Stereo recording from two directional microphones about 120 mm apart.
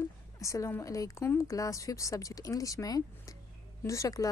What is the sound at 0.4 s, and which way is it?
A woman's voice, 25° left (ahead or behind).